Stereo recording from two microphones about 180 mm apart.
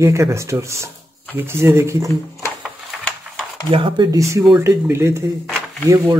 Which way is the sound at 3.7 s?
25° right (ahead or behind).